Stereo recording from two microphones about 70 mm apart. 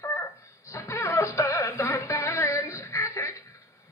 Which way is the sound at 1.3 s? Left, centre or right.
Left.